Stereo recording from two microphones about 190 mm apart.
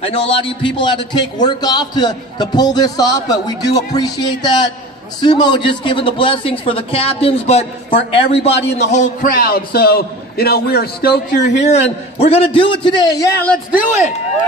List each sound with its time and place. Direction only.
0.0 s a man's voice: 30° left (ahead or behind); by 11.5 s 60° left (ahead or behind)
11.6 s a man's voice: 35° left (ahead or behind); by 13.6 s 10° left (ahead or behind)